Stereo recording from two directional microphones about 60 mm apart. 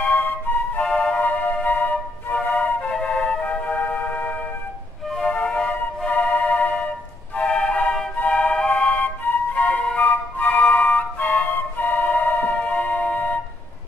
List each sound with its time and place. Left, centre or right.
0.0 s flute: left
0.8 s music: centre
8.2 s flute: left